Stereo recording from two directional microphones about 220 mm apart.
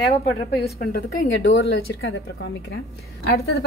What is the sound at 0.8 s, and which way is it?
A woman's voice, 40° left (ahead or behind).